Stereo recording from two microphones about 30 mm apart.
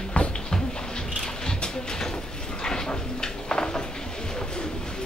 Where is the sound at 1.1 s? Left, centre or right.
Centre.